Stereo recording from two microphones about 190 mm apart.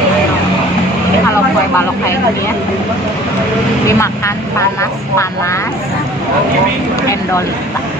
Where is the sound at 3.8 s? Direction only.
15° left (ahead or behind).